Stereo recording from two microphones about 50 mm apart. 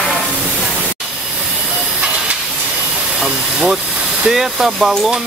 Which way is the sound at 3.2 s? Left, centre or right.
Centre.